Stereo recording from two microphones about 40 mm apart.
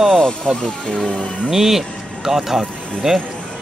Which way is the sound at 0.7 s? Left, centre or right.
Left.